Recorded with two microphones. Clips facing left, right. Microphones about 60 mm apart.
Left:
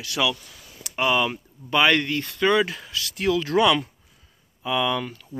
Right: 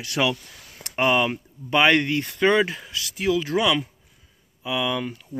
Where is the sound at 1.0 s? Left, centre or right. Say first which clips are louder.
Right 1 dB; centre.